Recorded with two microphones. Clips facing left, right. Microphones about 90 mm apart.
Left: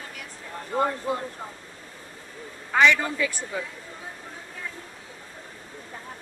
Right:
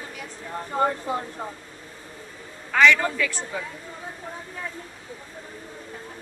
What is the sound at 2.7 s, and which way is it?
Speech, 20° left (ahead or behind).